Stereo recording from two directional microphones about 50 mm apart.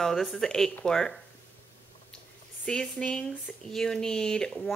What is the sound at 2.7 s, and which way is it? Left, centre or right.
Speech, centre.